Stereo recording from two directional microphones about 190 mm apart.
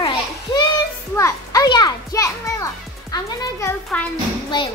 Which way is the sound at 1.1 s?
15° left (ahead or behind).